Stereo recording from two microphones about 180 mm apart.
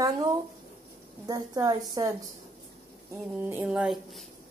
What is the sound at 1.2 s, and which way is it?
Speech, 20° right (ahead or behind).